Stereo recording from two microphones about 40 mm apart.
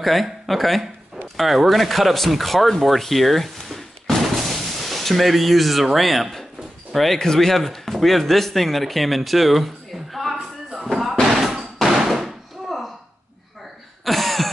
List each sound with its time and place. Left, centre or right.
0.0 s speech: centre
4.5 s a sound: centre
5.9 s speech: centre
10.1 s a sound: centre
11.3 s knock: centre
14.0 s cough: centre